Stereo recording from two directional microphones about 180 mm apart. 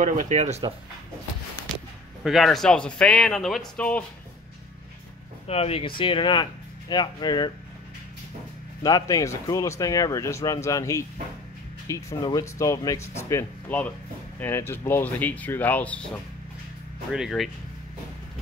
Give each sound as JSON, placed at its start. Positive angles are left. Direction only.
{"t": 0.0, "sound": "speech", "side_deg": -45}
{"t": 2.2, "sound": "speech", "side_deg": 0}
{"t": 5.5, "sound": "speech", "side_deg": 35}
{"t": 8.8, "sound": "speech", "side_deg": 20}